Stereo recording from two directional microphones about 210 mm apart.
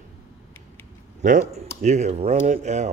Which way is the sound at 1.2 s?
35° right (ahead or behind).